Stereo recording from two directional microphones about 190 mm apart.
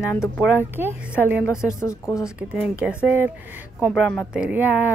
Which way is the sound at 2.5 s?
5° right (ahead or behind).